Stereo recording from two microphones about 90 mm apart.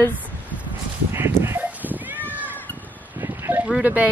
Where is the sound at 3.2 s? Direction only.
30° right (ahead or behind).